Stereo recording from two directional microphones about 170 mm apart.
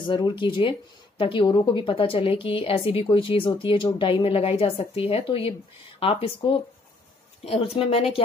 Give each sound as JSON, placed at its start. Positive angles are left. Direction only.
{"t": 0.1, "sound": "speech", "side_deg": 25}